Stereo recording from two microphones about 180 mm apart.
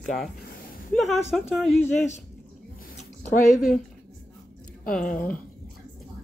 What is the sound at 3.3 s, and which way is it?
Speech, 45° left (ahead or behind).